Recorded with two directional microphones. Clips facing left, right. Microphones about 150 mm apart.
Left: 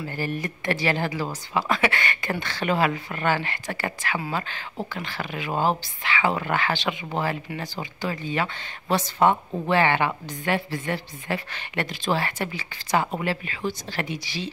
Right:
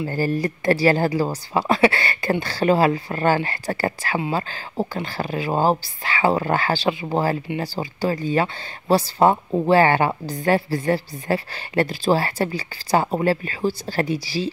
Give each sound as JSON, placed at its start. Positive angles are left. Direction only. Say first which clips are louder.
{"t": 0.1, "sound": "speech", "louder": "right 7 dB", "side_deg": -35}